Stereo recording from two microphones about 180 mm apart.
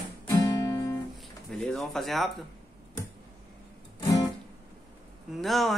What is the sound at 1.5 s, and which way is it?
Music, centre (ahead or behind).